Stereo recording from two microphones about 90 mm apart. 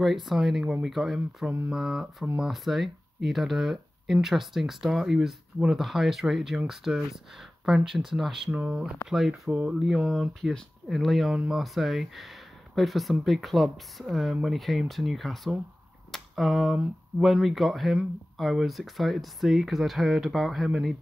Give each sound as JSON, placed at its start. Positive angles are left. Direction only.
{"t": 0.0, "sound": "speech", "side_deg": -5}
{"t": 8.5, "sound": "speech", "side_deg": -15}